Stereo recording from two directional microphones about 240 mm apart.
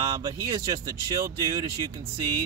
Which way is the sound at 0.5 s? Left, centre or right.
Centre.